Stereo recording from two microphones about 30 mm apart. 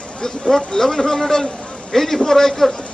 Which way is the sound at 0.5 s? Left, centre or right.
Centre.